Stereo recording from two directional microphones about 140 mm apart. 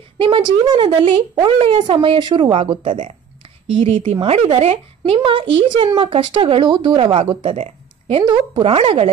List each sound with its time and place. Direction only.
0.2 s speech: 35° right (ahead or behind)
2.9 s speech: 55° right (ahead or behind)
3.7 s speech: 40° right (ahead or behind)
7.6 s a sound: 45° right (ahead or behind)
8.3 s speech: 40° right (ahead or behind)